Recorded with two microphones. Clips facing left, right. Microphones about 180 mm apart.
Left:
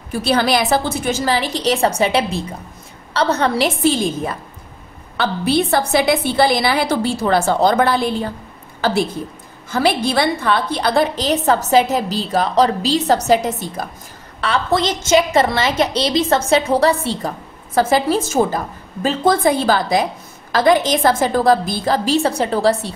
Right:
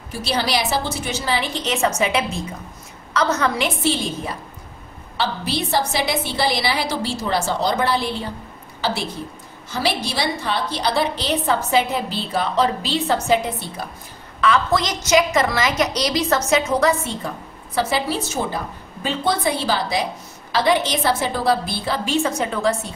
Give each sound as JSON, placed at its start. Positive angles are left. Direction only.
{"t": 0.2, "sound": "a woman's voice", "side_deg": 55}
{"t": 3.8, "sound": "a woman's voice", "side_deg": 45}
{"t": 9.7, "sound": "a woman's voice", "side_deg": 50}
{"t": 14.4, "sound": "a woman's voice", "side_deg": 30}
{"t": 17.7, "sound": "a woman's voice", "side_deg": 45}